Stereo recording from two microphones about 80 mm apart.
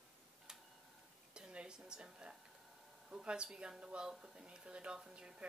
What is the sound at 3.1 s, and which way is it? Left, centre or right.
A woman's voice, centre.